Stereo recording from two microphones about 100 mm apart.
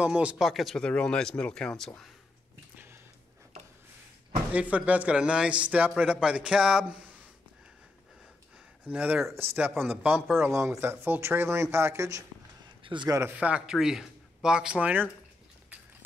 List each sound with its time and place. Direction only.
0.0 s speech: 10° right (ahead or behind); by 2.0 s 5° left (ahead or behind)
4.5 s speech: 15° right (ahead or behind)
8.8 s speech: 15° right (ahead or behind)
12.8 s a man's voice: 55° right (ahead or behind)
13.3 s speech: 10° right (ahead or behind)